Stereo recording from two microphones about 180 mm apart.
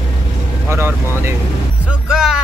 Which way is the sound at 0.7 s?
15° right (ahead or behind).